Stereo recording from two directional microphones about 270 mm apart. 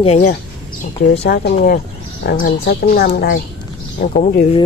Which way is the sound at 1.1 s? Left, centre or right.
Left.